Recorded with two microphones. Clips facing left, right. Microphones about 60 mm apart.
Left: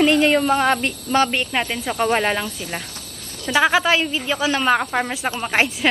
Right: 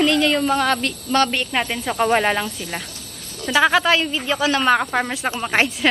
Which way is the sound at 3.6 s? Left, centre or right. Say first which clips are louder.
Right 1 dB; centre.